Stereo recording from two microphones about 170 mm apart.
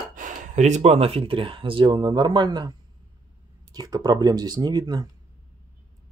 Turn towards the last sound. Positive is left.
turn(degrees=-25)  # may be behind; listen again after turning